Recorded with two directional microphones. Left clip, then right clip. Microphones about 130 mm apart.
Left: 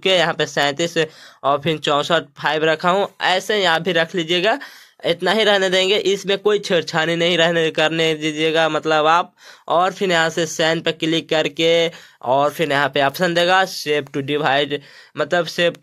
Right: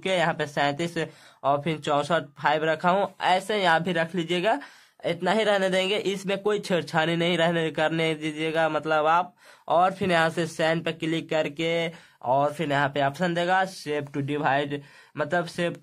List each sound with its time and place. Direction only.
0.0 s speech: 30° left (ahead or behind)